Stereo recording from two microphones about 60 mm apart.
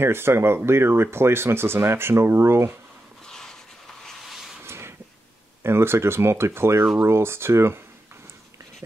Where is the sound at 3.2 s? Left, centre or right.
Centre.